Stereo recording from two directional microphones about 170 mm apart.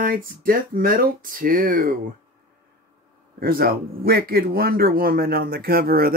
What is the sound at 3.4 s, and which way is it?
Speech, 60° right (ahead or behind).